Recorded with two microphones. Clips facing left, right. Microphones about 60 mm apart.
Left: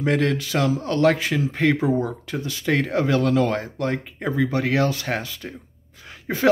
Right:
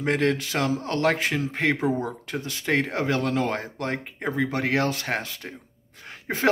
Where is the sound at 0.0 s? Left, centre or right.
Right.